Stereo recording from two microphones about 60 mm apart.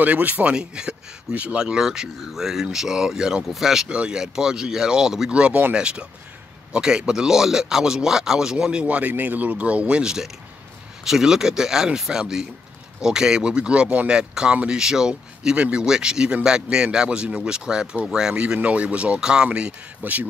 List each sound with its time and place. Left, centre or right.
0.0 s speech: right
0.5 s speech: centre
8.8 s speech: right
20.0 s speech: right